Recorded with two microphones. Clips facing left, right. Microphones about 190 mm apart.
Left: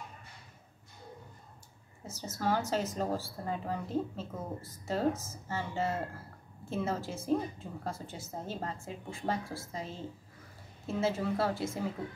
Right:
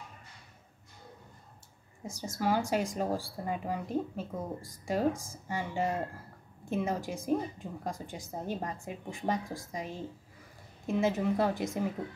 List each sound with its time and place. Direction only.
2.0 s a woman's voice: 15° right (ahead or behind)